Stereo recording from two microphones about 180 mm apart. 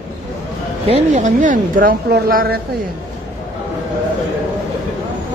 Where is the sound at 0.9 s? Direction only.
40° right (ahead or behind).